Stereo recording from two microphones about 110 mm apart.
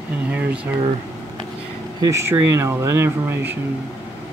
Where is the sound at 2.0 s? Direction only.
25° right (ahead or behind).